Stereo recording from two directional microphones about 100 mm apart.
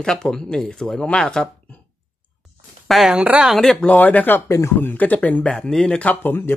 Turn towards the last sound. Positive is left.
turn(degrees=20)  # may be behind; listen again after turning